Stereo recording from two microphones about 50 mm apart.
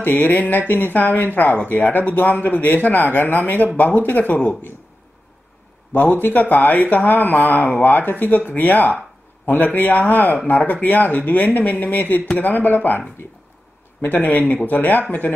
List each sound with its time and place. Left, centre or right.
0.0 s speech: left
6.2 s speech: left
14.0 s speech: left